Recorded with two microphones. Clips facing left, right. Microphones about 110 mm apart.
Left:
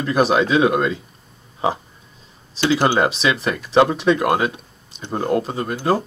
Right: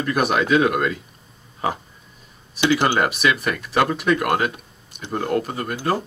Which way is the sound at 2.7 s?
25° left (ahead or behind).